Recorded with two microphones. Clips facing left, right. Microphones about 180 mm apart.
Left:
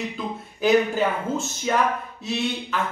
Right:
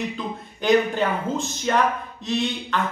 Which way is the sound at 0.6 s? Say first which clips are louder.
Even; 5° left (ahead or behind).